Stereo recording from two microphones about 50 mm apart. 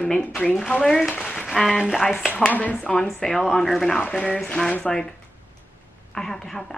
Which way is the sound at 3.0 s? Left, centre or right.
Centre.